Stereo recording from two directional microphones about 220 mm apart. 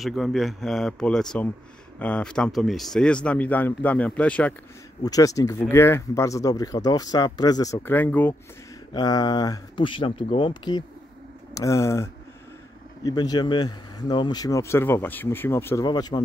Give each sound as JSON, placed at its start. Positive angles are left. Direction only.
{"t": 0.0, "sound": "speech", "side_deg": 0}
{"t": 8.9, "sound": "speech", "side_deg": 20}